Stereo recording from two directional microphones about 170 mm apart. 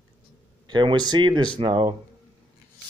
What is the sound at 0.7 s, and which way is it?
Speech, 25° right (ahead or behind).